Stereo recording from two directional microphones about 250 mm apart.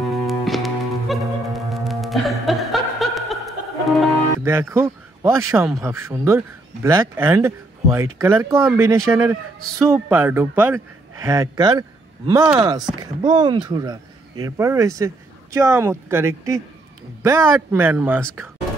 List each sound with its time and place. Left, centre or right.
0.1 s music: centre
4.4 s a man's voice: centre